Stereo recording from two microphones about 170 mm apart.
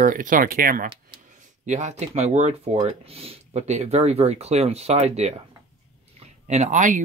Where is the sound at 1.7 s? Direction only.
45° right (ahead or behind).